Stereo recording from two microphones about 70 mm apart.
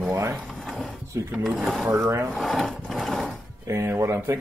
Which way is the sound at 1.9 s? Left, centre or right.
Right.